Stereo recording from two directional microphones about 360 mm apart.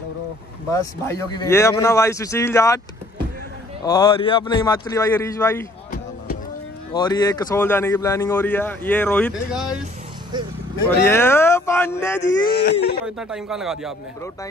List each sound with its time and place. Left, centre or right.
0.7 s a man's voice: centre
3.8 s a man's voice: centre
6.9 s a man's voice: centre
10.3 s speech: centre
10.9 s a man's voice: centre
12.2 s speech: left
13.0 s a man's voice: centre